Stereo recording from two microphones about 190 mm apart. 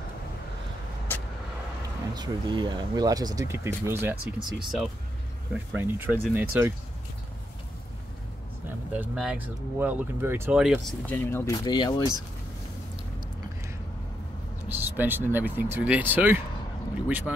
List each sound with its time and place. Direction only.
2.1 s speech: 25° right (ahead or behind)
8.9 s speech: 5° right (ahead or behind)
11.1 s speech: 10° left (ahead or behind)
14.7 s speech: 10° right (ahead or behind)